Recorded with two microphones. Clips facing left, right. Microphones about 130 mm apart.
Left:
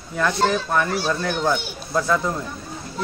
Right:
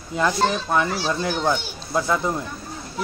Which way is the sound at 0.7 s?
15° right (ahead or behind).